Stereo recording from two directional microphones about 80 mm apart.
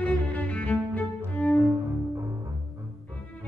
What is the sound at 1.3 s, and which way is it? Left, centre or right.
Cello, centre.